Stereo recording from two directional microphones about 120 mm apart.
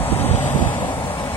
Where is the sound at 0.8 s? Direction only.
45° left (ahead or behind).